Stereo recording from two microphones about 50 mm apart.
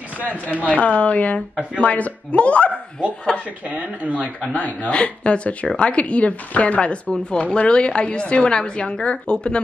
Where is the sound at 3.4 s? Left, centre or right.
Right.